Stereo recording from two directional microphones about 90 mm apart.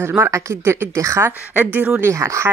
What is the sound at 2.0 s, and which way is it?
Speech, 30° right (ahead or behind).